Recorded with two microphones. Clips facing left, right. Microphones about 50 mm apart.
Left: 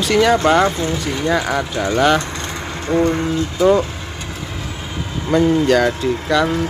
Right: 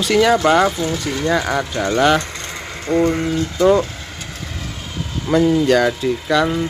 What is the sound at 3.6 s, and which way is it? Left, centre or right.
Speech, centre.